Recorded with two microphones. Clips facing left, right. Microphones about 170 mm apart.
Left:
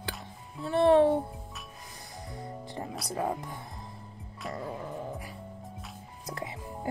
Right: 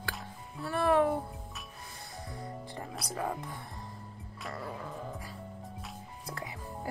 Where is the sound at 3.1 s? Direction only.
20° left (ahead or behind).